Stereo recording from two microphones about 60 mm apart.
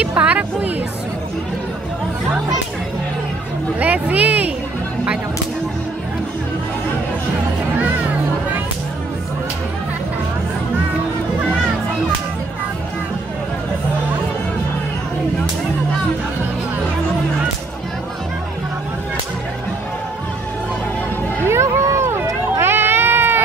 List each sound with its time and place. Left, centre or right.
0.2 s speech: right
3.8 s speech: right
21.5 s a sound: right